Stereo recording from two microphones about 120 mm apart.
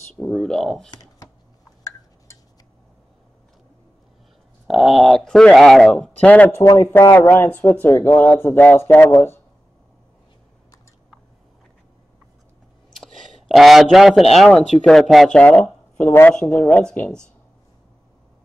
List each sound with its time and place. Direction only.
0.1 s speech: 5° left (ahead or behind)
4.6 s speech: centre (ahead or behind); by 9.4 s 20° left (ahead or behind)
12.9 s a sound: centre (ahead or behind)
14.3 s speech: centre (ahead or behind); by 16.3 s 20° left (ahead or behind)
16.3 s speech: 5° left (ahead or behind)